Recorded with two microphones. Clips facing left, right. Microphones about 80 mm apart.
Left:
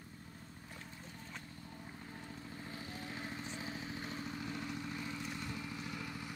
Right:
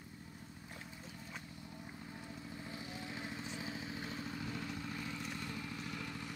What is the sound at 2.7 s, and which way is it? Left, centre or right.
Vehicle, right.